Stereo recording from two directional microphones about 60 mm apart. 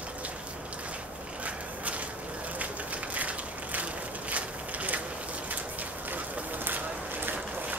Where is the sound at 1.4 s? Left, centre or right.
Right.